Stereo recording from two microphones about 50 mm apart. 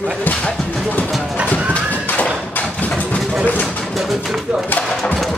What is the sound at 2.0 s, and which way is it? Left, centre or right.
Bouncing, left.